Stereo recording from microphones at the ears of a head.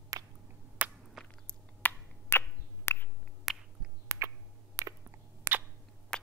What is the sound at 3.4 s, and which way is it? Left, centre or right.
Finger snapping, right.